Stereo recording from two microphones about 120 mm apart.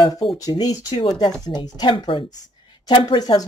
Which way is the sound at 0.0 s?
35° left (ahead or behind).